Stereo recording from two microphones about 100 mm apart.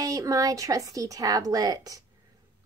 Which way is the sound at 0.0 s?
35° right (ahead or behind).